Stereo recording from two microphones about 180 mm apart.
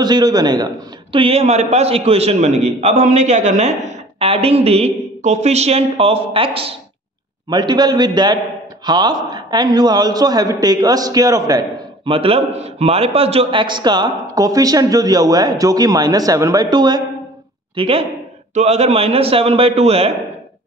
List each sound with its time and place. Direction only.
0.0 s a man's voice: 20° right (ahead or behind)
12.1 s a man's voice: 30° right (ahead or behind)